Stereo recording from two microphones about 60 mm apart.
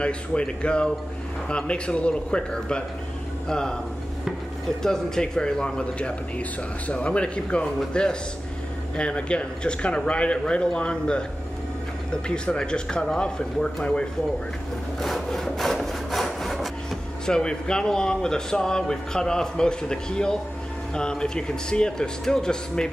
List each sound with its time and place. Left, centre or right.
0.0 s speech: centre
4.8 s speech: centre
15.0 s wood: centre
17.4 s speech: centre